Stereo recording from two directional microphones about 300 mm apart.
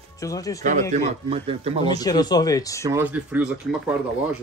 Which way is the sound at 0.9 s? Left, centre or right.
Centre.